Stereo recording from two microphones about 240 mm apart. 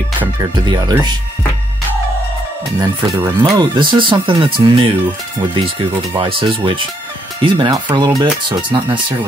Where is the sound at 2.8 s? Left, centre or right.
Centre.